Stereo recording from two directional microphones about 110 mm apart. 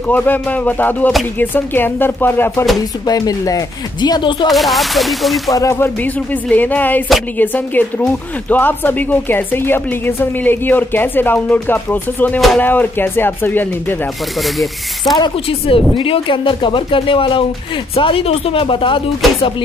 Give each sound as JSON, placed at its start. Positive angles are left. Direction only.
{"t": 0.1, "sound": "speech", "side_deg": 15}
{"t": 3.1, "sound": "speech", "side_deg": 35}
{"t": 4.5, "sound": "speech", "side_deg": 0}
{"t": 5.5, "sound": "speech", "side_deg": 30}
{"t": 6.0, "sound": "speech", "side_deg": 15}
{"t": 14.4, "sound": "speech", "side_deg": 0}
{"t": 15.6, "sound": "speech", "side_deg": 55}